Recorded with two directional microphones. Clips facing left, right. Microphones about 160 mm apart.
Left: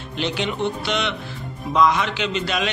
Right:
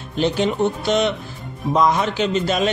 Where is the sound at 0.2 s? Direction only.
40° right (ahead or behind).